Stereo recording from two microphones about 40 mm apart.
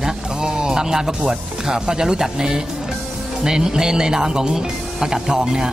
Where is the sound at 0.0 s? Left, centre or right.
Centre.